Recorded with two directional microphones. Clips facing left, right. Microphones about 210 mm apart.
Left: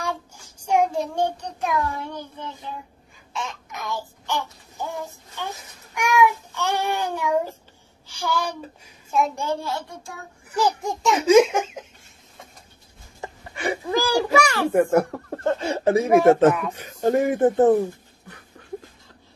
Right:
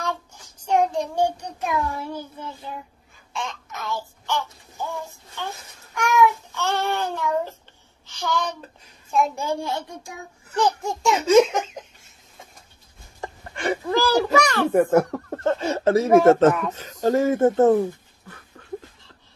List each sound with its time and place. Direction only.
0.0 s child singing: 10° left (ahead or behind)
1.1 s a child's voice: 10° right (ahead or behind)
3.7 s a child's voice: 15° left (ahead or behind)
5.9 s child singing: 15° left (ahead or behind)
8.2 s a child's voice: 10° left (ahead or behind)
9.4 s a woman's voice: 15° right (ahead or behind)
10.5 s speech: 10° left (ahead or behind)
13.2 s a sound: 10° left (ahead or behind)
14.7 s a child's voice: 5° right (ahead or behind)
15.7 s speech: 15° left (ahead or behind)